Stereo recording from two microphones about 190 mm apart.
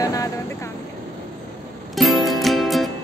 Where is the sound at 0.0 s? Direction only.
20° left (ahead or behind).